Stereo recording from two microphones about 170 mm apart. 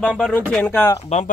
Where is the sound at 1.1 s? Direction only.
40° left (ahead or behind).